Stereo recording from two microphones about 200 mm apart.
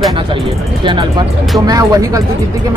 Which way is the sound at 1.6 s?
15° right (ahead or behind).